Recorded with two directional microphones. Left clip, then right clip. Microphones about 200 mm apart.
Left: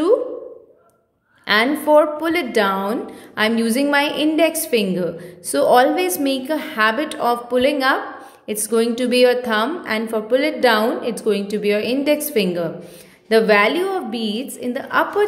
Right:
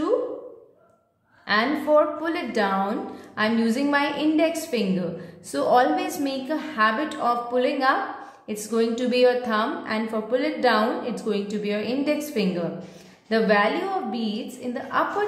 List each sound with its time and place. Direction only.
1.4 s a woman's voice: 40° left (ahead or behind)